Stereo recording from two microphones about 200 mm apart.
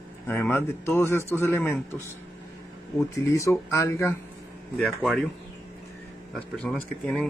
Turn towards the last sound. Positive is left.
turn(degrees=5)  # may be behind; listen again after turning